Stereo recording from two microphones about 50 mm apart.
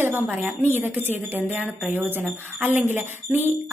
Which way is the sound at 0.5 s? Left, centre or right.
Right.